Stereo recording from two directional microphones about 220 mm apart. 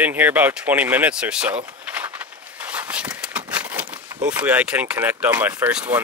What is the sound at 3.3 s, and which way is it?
Speech, 5° right (ahead or behind).